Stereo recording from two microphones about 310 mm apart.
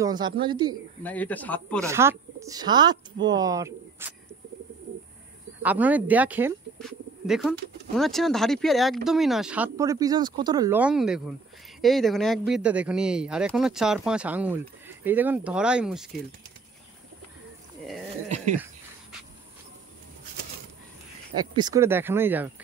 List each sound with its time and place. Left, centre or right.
0.0 s speech: centre
1.0 s speech: centre
1.9 s speech: centre
5.6 s speech: centre
18.3 s a sound: right
21.5 s speech: centre